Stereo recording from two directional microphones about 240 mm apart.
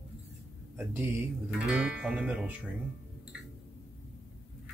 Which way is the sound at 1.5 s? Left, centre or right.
Centre.